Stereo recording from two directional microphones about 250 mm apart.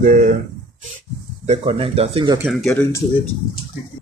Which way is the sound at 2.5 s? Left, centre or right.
Centre.